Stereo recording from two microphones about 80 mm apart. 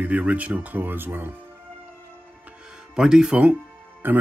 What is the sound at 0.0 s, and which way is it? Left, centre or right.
Speech, centre.